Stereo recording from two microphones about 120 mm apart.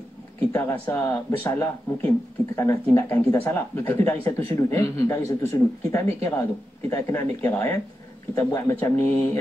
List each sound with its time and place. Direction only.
0.5 s speech: 20° left (ahead or behind)
4.6 s speech: 25° left (ahead or behind)